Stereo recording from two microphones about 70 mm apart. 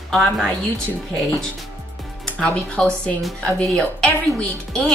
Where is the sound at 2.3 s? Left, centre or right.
Centre.